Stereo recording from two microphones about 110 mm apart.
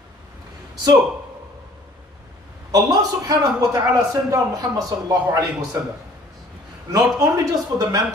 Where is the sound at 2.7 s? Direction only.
35° right (ahead or behind).